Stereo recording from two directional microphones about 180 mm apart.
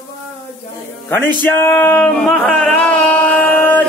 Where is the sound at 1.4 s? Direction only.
15° left (ahead or behind).